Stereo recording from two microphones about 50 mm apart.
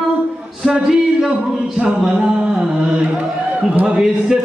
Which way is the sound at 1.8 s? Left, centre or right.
Centre.